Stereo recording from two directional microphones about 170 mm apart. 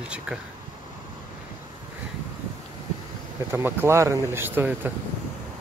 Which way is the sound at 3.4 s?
15° right (ahead or behind).